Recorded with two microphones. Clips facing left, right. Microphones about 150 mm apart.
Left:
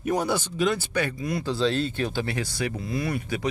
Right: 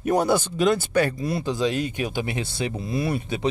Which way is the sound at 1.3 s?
25° right (ahead or behind).